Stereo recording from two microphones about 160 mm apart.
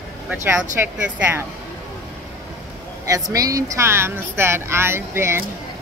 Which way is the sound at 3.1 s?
20° right (ahead or behind).